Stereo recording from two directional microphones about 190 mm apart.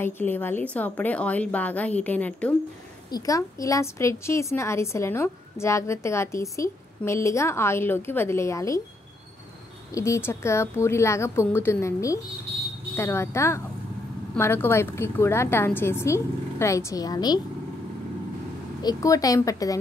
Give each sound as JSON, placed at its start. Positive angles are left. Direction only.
{"t": 0.0, "sound": "a woman's voice", "side_deg": 10}
{"t": 9.9, "sound": "a woman's voice", "side_deg": 15}
{"t": 18.8, "sound": "a woman's voice", "side_deg": 20}